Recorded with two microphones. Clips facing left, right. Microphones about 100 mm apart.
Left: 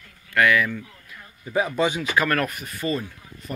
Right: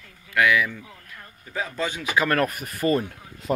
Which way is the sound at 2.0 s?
15° right (ahead or behind).